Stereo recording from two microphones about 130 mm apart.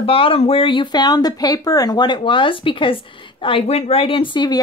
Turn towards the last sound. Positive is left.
turn(degrees=35)  # may be behind; listen again after turning